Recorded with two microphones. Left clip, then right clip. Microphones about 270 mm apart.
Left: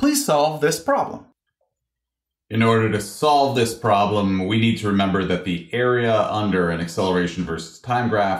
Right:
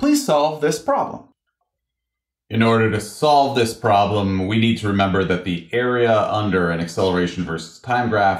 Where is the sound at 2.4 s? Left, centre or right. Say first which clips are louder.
Right 1 dB; right.